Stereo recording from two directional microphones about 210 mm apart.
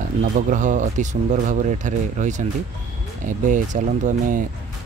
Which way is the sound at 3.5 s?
35° right (ahead or behind).